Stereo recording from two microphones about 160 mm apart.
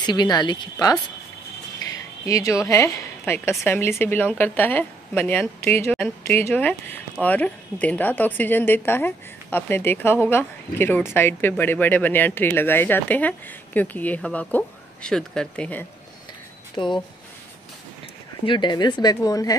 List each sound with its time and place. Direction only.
0.0 s speech: 25° left (ahead or behind)
2.2 s speech: 20° left (ahead or behind)
16.7 s speech: 30° left (ahead or behind)
18.4 s speech: 30° left (ahead or behind)